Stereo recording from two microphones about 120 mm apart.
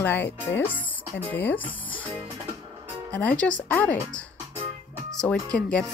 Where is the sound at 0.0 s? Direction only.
20° left (ahead or behind).